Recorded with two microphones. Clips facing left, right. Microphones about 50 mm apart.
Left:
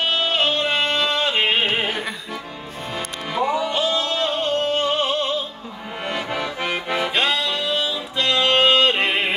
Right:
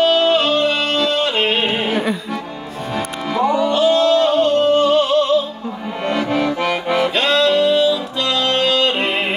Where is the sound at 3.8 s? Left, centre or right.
Right.